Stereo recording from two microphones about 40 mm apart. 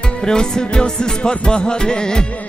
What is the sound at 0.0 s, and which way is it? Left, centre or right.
Music, centre.